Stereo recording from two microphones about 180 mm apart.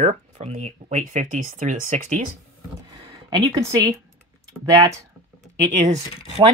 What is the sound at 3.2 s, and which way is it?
Speech, 20° right (ahead or behind).